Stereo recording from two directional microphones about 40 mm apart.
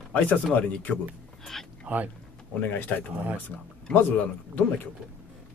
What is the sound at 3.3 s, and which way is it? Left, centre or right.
Speech, left.